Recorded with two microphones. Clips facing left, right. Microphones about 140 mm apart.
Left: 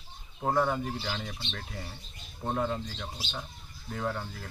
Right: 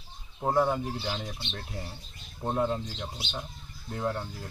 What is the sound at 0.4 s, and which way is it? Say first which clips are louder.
Speech: right 2 dB; 10° right (ahead or behind).